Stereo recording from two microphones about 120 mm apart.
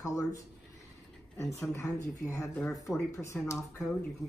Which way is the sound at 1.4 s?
25° left (ahead or behind).